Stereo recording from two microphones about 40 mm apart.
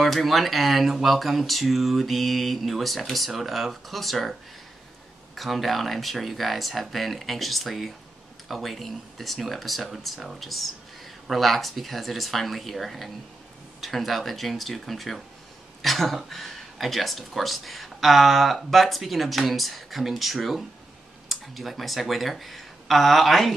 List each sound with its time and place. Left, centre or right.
0.0 s speech: centre